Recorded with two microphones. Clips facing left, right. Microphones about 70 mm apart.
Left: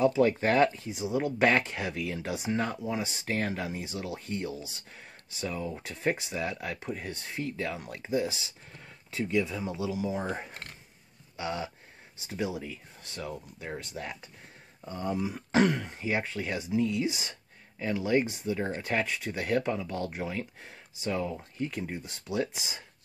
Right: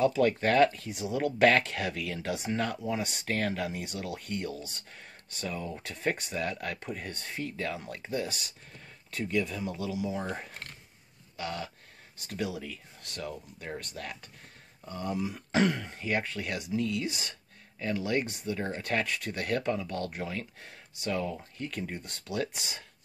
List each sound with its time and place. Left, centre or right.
0.0 s speech: centre
10.2 s speech: centre